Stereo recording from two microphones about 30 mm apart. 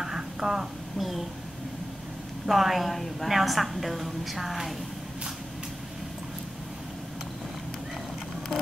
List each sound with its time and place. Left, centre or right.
0.0 s a sound: centre
0.9 s speech: centre
2.4 s a woman's voice: centre